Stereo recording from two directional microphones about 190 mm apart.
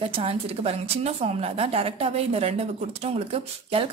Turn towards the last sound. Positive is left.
turn(degrees=-30)  # may be behind; listen again after turning